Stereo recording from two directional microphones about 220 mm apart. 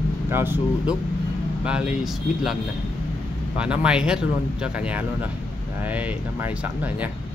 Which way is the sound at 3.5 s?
5° right (ahead or behind).